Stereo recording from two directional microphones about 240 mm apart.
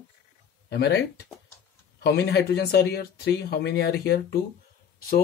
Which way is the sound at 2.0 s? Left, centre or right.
Left.